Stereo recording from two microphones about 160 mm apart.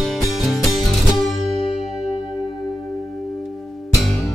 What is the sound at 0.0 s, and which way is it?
Music, centre (ahead or behind).